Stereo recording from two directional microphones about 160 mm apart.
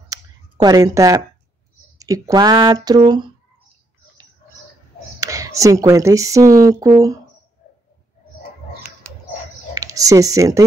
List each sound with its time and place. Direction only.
0.1 s a sound: 25° right (ahead or behind)
2.0 s speech: 20° right (ahead or behind)
5.2 s speech: 20° right (ahead or behind)
9.8 s speech: 20° right (ahead or behind)